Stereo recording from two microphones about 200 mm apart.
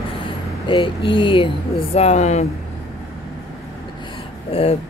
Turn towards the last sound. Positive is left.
turn(degrees=30)  # may be behind; listen again after turning